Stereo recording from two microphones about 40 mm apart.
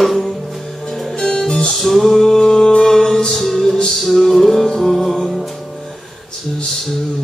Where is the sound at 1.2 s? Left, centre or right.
Centre.